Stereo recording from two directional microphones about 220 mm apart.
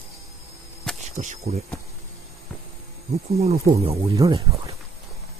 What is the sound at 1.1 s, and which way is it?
Speech, 30° right (ahead or behind).